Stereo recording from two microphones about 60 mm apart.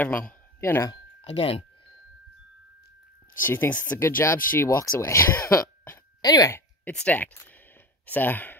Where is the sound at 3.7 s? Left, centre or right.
Left.